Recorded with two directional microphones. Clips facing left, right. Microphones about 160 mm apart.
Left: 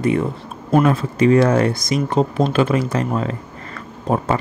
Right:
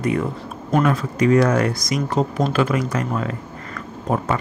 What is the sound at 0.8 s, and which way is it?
Speech, 25° left (ahead or behind).